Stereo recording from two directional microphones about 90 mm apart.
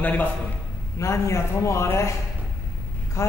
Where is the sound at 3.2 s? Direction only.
30° left (ahead or behind).